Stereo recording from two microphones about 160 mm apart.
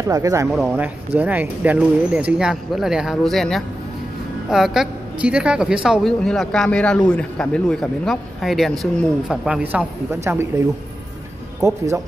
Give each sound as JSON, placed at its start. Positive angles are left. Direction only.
{"t": 0.0, "sound": "speech", "side_deg": -20}
{"t": 0.5, "sound": "a woman's voice", "side_deg": 0}
{"t": 0.7, "sound": "a woman's voice", "side_deg": -10}
{"t": 11.6, "sound": "speech", "side_deg": -20}